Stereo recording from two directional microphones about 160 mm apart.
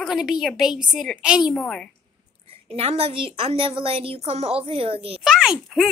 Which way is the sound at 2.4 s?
35° right (ahead or behind).